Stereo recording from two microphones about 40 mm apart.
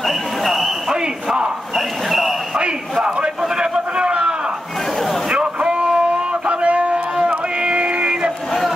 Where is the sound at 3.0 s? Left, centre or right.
Right.